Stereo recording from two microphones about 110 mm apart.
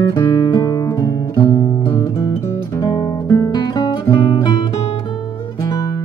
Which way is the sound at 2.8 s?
40° left (ahead or behind).